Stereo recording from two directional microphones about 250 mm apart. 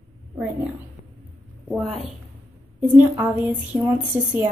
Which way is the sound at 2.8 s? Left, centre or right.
Centre.